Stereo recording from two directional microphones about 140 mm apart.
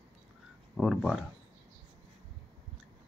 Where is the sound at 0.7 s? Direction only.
Centre (ahead or behind).